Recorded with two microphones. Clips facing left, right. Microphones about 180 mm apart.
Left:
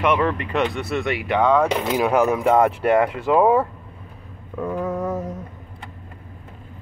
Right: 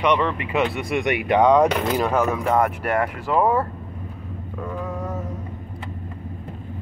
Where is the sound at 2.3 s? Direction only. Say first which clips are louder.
Left 3 dB; 25° left (ahead or behind).